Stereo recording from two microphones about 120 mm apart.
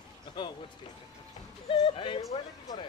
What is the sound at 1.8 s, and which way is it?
Speech, 50° left (ahead or behind).